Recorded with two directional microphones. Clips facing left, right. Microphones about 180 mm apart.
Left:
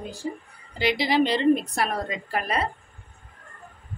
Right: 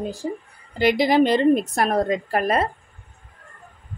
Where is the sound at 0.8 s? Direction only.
50° right (ahead or behind).